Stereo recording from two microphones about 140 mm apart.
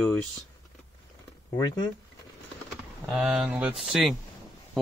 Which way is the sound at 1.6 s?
30° left (ahead or behind).